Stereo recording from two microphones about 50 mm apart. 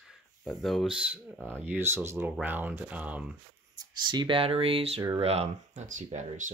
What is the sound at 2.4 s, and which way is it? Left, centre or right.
Speech, right.